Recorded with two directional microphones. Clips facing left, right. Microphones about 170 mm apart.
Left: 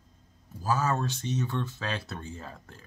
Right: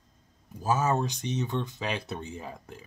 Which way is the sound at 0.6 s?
20° right (ahead or behind).